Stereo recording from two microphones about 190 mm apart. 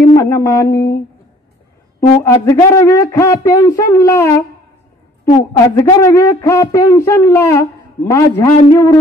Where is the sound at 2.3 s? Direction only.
15° left (ahead or behind).